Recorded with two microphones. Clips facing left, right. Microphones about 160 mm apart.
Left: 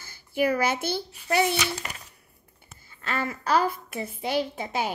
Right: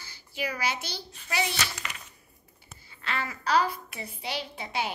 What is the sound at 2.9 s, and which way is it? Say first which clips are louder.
A woman's voice: left 4 dB; 45° left (ahead or behind).